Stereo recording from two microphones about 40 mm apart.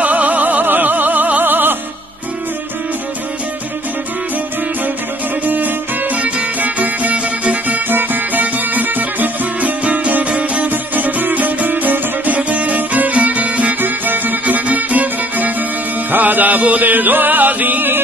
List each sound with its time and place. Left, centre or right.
0.0 s music: right
1.4 s music: right
5.4 s music: right
7.9 s music: right
10.7 s music: right
13.7 s music: right
14.4 s music: right
16.9 s music: right